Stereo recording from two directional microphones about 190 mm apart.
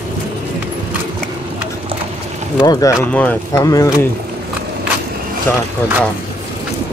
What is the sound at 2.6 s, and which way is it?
Speech, 20° left (ahead or behind).